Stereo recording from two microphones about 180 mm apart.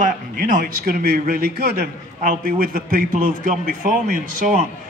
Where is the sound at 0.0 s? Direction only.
50° right (ahead or behind).